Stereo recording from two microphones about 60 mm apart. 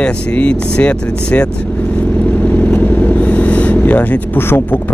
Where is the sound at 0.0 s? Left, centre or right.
Centre.